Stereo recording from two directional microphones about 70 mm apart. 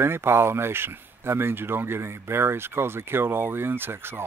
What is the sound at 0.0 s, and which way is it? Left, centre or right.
Speech, right.